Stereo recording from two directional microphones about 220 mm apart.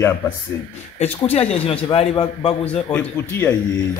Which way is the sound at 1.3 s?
25° left (ahead or behind).